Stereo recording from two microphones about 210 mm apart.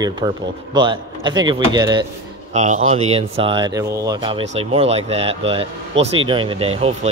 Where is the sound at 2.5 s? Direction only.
35° right (ahead or behind).